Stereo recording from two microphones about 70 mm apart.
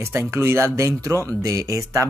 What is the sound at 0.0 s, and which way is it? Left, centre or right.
Speech, right.